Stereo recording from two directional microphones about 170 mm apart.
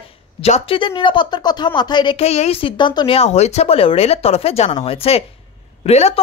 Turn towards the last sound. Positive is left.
turn(degrees=35)  # may be behind; listen again after turning